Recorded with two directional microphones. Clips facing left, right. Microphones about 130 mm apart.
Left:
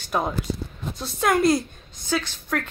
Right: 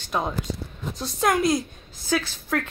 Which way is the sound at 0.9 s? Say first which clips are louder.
Left 1 dB; centre (ahead or behind).